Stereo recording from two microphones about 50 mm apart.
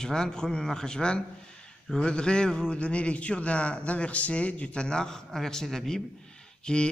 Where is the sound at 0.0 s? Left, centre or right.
Centre.